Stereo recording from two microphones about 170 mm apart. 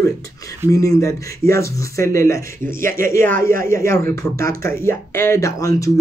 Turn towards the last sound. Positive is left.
turn(degrees=20)  # may be behind; listen again after turning